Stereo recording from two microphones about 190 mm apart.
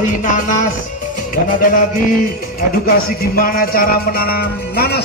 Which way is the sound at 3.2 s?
50° left (ahead or behind).